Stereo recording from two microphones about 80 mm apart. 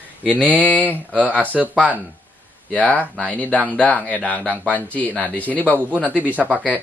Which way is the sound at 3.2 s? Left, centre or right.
Centre.